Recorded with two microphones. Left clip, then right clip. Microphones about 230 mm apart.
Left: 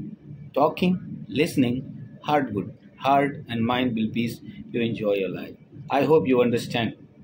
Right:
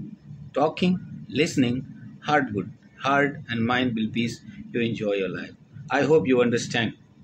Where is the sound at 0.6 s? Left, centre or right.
Centre.